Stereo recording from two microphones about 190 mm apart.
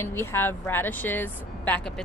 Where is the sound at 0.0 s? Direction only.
10° left (ahead or behind).